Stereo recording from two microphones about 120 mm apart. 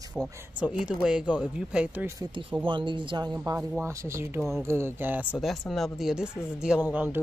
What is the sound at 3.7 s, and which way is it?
Speech, 25° right (ahead or behind).